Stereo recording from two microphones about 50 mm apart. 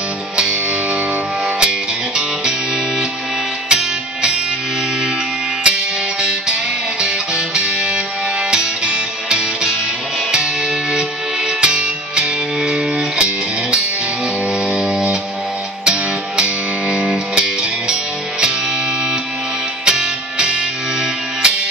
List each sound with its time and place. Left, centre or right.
1.6 s music: centre
3.6 s music: centre
7.0 s music: centre
19.8 s music: centre